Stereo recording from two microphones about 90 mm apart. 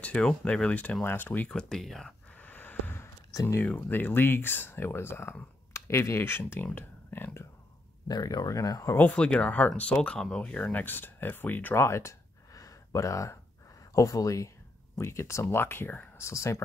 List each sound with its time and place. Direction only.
0.0 s speech: 10° left (ahead or behind)
1.5 s speech: 5° left (ahead or behind)
2.3 s a sound: 20° left (ahead or behind)
3.0 s a sound: 35° left (ahead or behind)
3.6 s speech: 20° left (ahead or behind)
8.1 s speech: 45° left (ahead or behind)
8.9 s speech: 15° left (ahead or behind); by 16.6 s 35° left (ahead or behind)